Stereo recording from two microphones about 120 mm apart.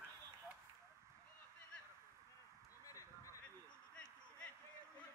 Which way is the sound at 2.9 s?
25° left (ahead or behind).